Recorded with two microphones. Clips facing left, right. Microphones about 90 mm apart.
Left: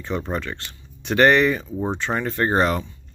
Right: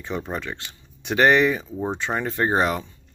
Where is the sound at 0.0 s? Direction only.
10° right (ahead or behind).